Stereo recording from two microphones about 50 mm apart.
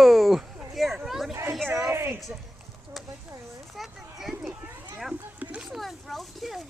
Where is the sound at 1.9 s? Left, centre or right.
Right.